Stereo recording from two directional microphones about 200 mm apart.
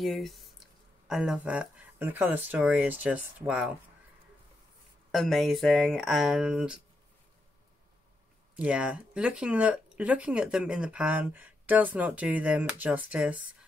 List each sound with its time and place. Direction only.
0.0 s speech: centre (ahead or behind)
5.1 s speech: centre (ahead or behind)
8.5 s speech: 5° right (ahead or behind)